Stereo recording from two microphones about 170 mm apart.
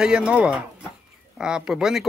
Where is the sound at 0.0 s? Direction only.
5° right (ahead or behind).